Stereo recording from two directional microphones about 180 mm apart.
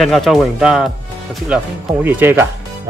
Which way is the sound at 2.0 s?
10° right (ahead or behind).